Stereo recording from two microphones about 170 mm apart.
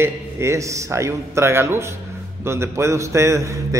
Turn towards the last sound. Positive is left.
turn(degrees=-20)  # may be behind; listen again after turning